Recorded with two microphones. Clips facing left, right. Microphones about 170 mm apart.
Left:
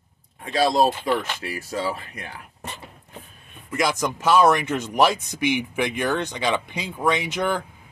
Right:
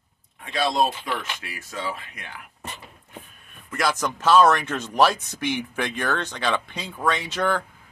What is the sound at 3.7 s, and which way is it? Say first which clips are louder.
Speech: left 2 dB; 15° left (ahead or behind).